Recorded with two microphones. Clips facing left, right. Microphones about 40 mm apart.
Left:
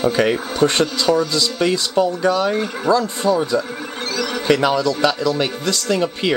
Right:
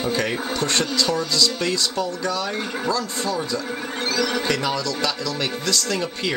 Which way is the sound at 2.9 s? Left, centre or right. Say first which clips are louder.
Left 9 dB; left.